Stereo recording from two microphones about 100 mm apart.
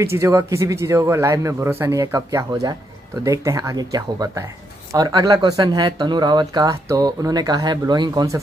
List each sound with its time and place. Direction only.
0.0 s speech: 30° right (ahead or behind)